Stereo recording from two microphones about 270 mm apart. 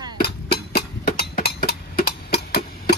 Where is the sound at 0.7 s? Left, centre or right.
Left.